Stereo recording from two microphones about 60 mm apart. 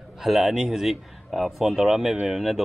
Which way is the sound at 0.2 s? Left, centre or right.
Centre.